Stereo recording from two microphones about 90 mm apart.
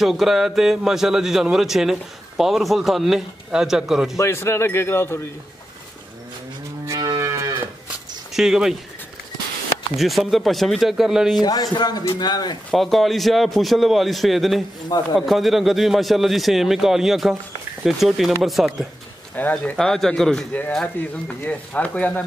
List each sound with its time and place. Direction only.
0.0 s a man's voice: centre (ahead or behind)
4.2 s speech: 30° left (ahead or behind)
6.9 s moo: 40° right (ahead or behind)
8.3 s speech: 5° right (ahead or behind)
9.9 s a man's voice: centre (ahead or behind)
11.4 s speech: 45° left (ahead or behind)
12.0 s a man's voice: 35° left (ahead or behind)
12.3 s speech: 50° left (ahead or behind)
12.7 s a man's voice: centre (ahead or behind)
19.5 s speech: 10° left (ahead or behind)